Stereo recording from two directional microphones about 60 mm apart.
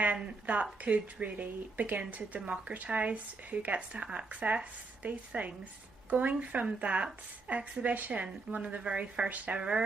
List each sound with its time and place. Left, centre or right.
0.0 s a woman's voice: right